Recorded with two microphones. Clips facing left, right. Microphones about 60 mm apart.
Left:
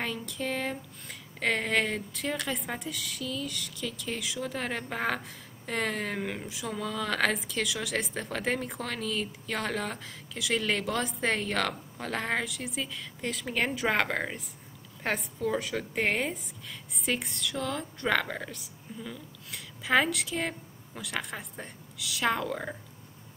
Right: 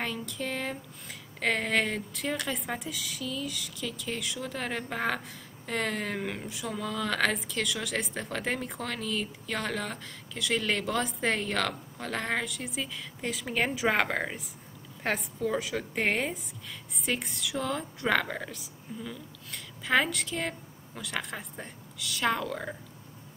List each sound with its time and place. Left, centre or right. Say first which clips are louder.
0.0 s speech: even; centre